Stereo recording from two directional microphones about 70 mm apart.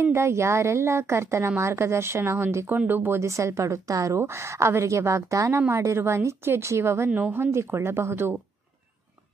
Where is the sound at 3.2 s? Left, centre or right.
Right.